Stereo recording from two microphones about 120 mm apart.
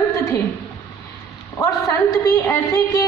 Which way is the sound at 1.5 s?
30° left (ahead or behind).